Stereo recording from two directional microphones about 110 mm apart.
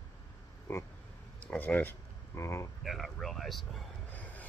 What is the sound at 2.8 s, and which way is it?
Speech, centre (ahead or behind).